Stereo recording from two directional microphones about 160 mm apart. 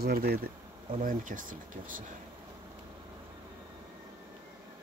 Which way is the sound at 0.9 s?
55° right (ahead or behind).